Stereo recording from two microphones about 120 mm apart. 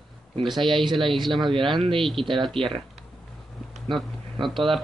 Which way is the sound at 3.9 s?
Centre (ahead or behind).